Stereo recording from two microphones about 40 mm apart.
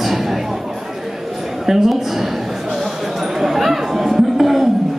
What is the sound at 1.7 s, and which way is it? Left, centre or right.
Speech, centre.